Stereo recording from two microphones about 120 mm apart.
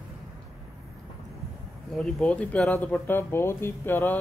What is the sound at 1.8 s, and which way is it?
Speech, centre (ahead or behind).